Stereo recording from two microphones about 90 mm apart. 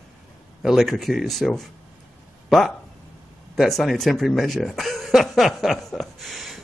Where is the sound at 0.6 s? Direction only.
Centre (ahead or behind).